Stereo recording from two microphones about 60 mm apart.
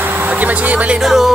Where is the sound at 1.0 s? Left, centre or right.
Centre.